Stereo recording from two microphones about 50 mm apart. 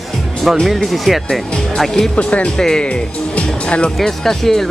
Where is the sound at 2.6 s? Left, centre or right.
Centre.